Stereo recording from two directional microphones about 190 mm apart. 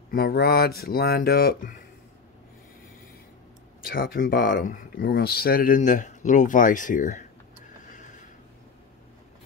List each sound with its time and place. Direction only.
0.1 s speech: 55° left (ahead or behind)
3.9 s speech: 50° left (ahead or behind)